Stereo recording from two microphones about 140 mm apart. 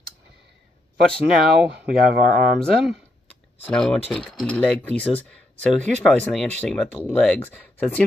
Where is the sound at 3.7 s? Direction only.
5° left (ahead or behind).